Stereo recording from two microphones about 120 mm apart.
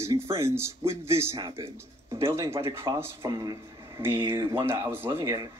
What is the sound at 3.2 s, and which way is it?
Speech, 35° right (ahead or behind).